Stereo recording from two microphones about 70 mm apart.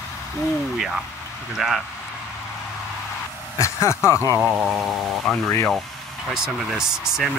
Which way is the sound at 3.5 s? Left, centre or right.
Left.